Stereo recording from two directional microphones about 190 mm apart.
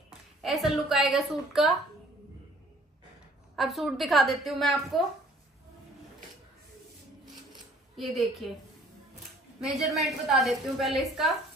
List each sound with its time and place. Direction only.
0.4 s a woman's voice: centre (ahead or behind)
3.5 s a woman's voice: centre (ahead or behind)
7.9 s a woman's voice: centre (ahead or behind)
9.6 s a woman's voice: centre (ahead or behind)